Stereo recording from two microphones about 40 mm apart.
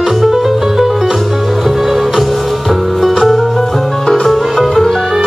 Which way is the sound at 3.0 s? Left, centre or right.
Centre.